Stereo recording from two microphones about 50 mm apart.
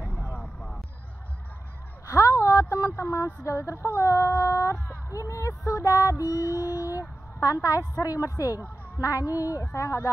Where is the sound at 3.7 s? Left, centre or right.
Left.